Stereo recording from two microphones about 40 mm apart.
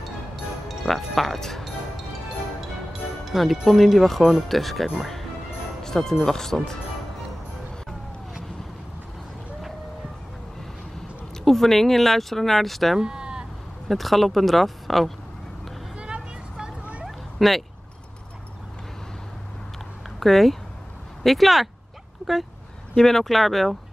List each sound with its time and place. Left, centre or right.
0.7 s speech: centre
3.3 s speech: centre
5.8 s music: centre
6.2 s speech: centre
11.4 s speech: centre
13.0 s bleat: right
13.8 s speech: centre
17.0 s a sound: centre
20.2 s speech: centre
22.9 s speech: centre